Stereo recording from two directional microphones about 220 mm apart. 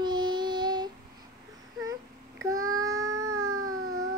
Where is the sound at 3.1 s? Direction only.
75° right (ahead or behind).